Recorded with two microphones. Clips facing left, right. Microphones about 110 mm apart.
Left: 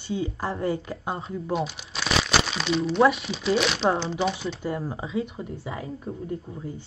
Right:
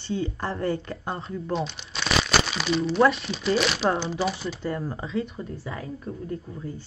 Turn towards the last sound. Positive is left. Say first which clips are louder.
# left 1 dB
turn(degrees=25)  # may be behind; listen again after turning